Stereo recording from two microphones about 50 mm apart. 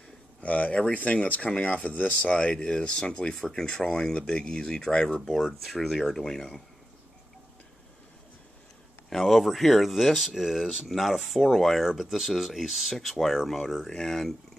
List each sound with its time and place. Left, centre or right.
0.4 s speech: left
5.4 s speech: centre
9.1 s speech: centre